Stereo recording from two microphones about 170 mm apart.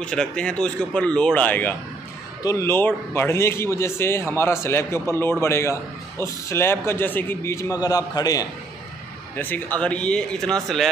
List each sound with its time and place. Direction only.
0.0 s a man's voice: 5° left (ahead or behind); by 8.5 s 20° left (ahead or behind)
9.4 s speech: 10° left (ahead or behind)